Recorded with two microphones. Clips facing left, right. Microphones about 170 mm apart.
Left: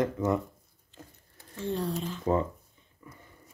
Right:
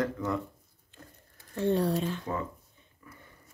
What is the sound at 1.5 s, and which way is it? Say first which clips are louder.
Speech: right 5 dB; 65° right (ahead or behind).